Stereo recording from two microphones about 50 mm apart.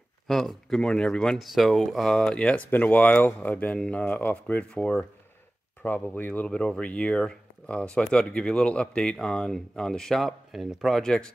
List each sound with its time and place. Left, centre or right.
0.3 s speech: centre
1.4 s speech: centre
2.1 s speech: centre
2.7 s speech: left
3.7 s speech: left
4.0 s speech: left
5.8 s speech: left
6.4 s speech: centre
11.0 s speech: centre